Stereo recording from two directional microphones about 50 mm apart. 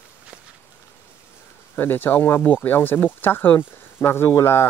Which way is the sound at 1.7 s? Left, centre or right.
Left.